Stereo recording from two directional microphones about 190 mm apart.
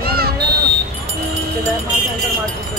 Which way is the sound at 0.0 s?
55° right (ahead or behind).